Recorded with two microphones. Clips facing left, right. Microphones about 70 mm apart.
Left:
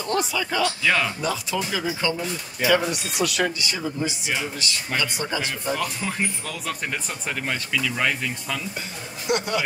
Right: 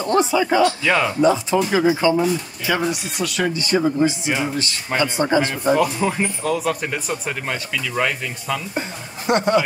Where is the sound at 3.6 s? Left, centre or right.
Right.